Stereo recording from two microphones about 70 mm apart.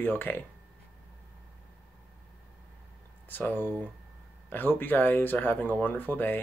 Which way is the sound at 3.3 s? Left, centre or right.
Left.